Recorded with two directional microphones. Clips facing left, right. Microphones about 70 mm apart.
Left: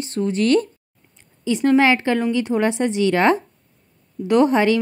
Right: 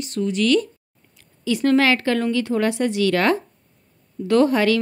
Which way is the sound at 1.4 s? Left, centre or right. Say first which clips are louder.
Left 2 dB; left.